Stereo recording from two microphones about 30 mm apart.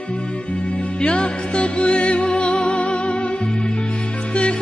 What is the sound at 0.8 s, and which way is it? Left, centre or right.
Music, left.